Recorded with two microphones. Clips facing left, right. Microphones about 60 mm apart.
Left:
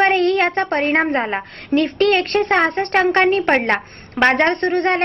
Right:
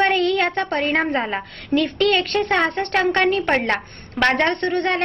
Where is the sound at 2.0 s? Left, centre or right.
Left.